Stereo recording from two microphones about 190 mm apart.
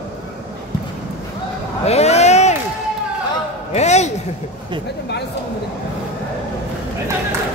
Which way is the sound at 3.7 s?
35° left (ahead or behind).